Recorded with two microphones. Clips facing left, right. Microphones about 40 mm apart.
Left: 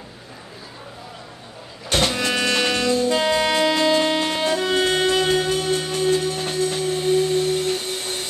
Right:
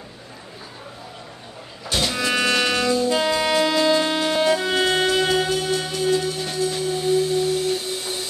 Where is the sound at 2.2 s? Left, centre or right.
Right.